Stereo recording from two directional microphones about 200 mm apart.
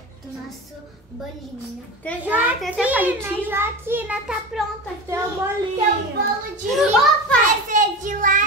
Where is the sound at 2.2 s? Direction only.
10° right (ahead or behind).